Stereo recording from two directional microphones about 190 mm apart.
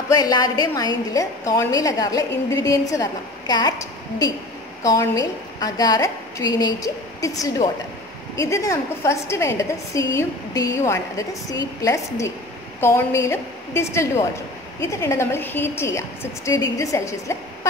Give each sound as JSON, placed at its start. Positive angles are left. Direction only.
{"t": 0.1, "sound": "a woman's voice", "side_deg": 20}